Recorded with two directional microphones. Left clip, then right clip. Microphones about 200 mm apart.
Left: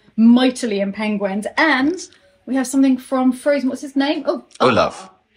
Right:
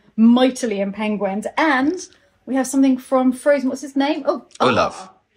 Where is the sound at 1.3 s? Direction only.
35° right (ahead or behind).